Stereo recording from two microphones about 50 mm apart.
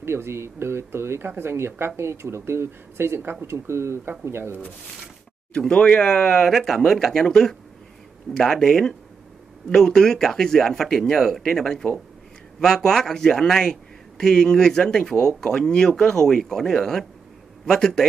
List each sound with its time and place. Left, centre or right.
0.0 s speech: right
3.4 s speech: right
5.7 s a man's voice: centre